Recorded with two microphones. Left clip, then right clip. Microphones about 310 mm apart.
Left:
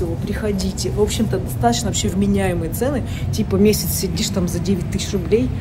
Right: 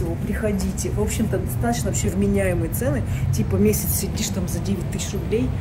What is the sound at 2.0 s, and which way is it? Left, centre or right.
Speech, centre.